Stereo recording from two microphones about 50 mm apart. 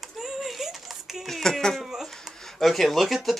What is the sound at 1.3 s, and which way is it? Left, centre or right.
Speech, centre.